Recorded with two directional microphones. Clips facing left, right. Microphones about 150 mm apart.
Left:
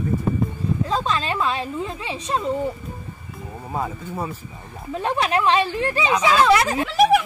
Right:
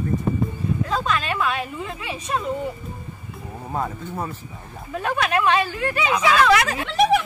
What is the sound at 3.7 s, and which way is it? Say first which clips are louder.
Speech: even; 5° left (ahead or behind).